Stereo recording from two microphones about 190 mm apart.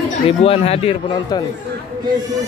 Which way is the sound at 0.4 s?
30° left (ahead or behind).